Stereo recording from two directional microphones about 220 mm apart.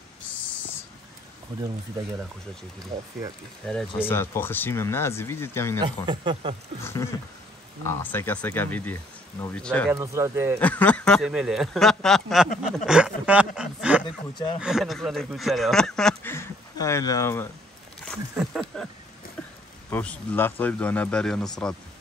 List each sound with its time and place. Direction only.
0.4 s a sound: 5° left (ahead or behind)
3.6 s speech: 5° left (ahead or behind)
5.8 s speech: 20° right (ahead or behind)
6.8 s speech: 10° left (ahead or behind)
9.9 s speech: 15° right (ahead or behind)
10.6 s speech: 5° left (ahead or behind)
13.6 s a sound: 5° right (ahead or behind)
14.0 s speech: 25° left (ahead or behind)
14.6 s speech: centre (ahead or behind)
18.3 s speech: centre (ahead or behind)
19.9 s speech: 5° left (ahead or behind)